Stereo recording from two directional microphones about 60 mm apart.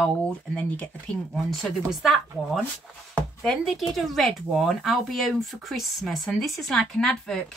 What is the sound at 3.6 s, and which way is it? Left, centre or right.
Speech, centre.